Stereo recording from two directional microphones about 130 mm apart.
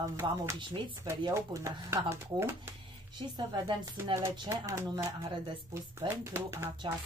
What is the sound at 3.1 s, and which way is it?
Speech, 35° right (ahead or behind).